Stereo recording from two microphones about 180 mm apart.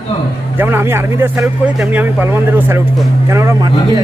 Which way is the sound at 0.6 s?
10° right (ahead or behind).